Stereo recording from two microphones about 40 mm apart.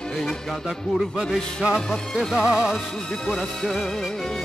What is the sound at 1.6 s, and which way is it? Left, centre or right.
Music, right.